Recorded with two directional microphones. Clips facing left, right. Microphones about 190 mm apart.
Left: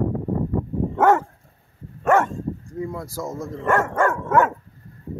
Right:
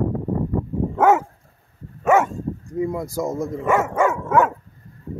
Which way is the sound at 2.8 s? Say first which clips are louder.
Right 8 dB; 15° right (ahead or behind).